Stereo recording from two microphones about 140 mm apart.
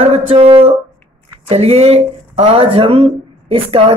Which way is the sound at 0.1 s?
40° right (ahead or behind).